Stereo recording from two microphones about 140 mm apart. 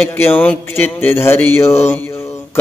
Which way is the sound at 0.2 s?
15° left (ahead or behind).